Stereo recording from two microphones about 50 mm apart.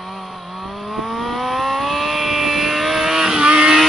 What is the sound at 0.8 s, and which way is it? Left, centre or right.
Vehicle, centre.